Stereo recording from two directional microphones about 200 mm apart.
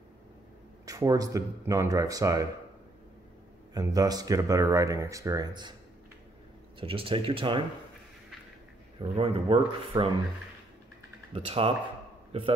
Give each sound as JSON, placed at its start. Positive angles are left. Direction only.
{"t": 0.8, "sound": "speech", "side_deg": -15}
{"t": 3.7, "sound": "speech", "side_deg": -20}
{"t": 6.8, "sound": "speech", "side_deg": -25}
{"t": 9.1, "sound": "speech", "side_deg": -30}
{"t": 11.3, "sound": "a man's voice", "side_deg": -30}